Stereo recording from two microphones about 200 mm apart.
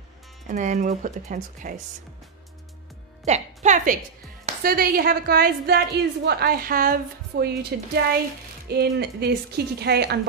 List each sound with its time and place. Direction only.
0.5 s speech: 40° right (ahead or behind)
3.3 s speech: 35° right (ahead or behind)
4.6 s a woman's voice: 50° right (ahead or behind)